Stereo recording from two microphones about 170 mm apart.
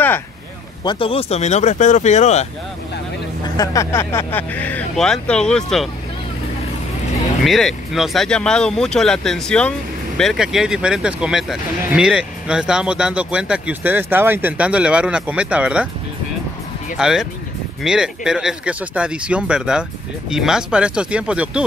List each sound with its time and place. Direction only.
0.8 s speech: 30° left (ahead or behind)
3.4 s speech: 20° left (ahead or behind); by 5.9 s 5° left (ahead or behind)
7.4 s speech: centre (ahead or behind)
17.0 s speech: centre (ahead or behind)